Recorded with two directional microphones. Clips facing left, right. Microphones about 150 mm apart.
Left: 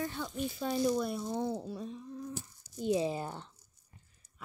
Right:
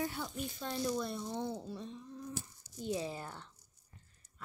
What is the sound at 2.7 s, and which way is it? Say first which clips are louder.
Speech: left 7 dB; 20° left (ahead or behind).